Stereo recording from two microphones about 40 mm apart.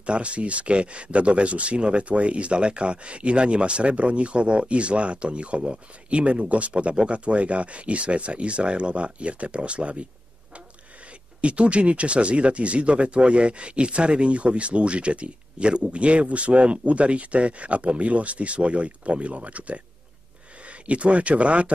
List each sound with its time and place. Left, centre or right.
0.0 s speech: right
11.4 s speech: right